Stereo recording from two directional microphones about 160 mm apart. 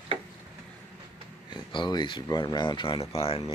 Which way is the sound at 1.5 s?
30° left (ahead or behind).